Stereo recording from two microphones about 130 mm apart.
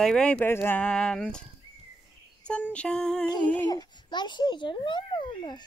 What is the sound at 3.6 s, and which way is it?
A child's voice, 30° left (ahead or behind).